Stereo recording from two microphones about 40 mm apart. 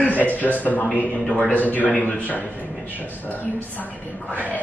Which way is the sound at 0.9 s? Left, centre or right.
Left.